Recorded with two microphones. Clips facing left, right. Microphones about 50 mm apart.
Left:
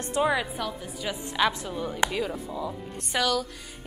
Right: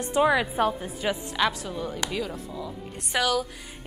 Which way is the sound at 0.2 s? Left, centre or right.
Centre.